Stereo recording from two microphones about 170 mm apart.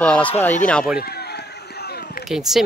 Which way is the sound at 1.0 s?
70° left (ahead or behind).